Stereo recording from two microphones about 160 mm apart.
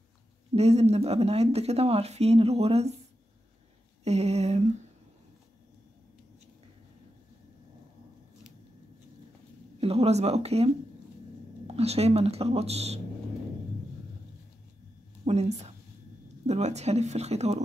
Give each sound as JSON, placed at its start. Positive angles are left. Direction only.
{"t": 0.6, "sound": "speech", "side_deg": -40}
{"t": 4.0, "sound": "speech", "side_deg": -45}
{"t": 9.8, "sound": "speech", "side_deg": -40}
{"t": 15.2, "sound": "speech", "side_deg": -45}